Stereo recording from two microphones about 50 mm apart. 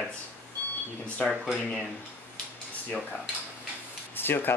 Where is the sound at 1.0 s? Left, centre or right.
Left.